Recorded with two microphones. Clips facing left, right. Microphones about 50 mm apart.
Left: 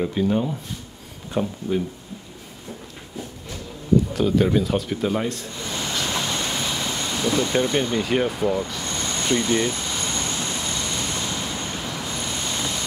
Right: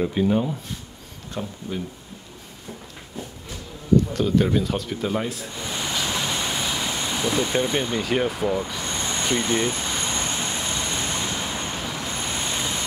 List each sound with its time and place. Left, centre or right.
0.0 s speech: centre
1.3 s speech: centre
3.9 s a sound: centre
7.5 s vehicle: centre; by 11.8 s right
11.8 s vehicle: centre
12.1 s vehicle: right